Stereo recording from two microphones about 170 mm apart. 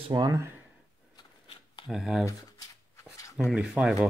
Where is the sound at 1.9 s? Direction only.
Centre (ahead or behind).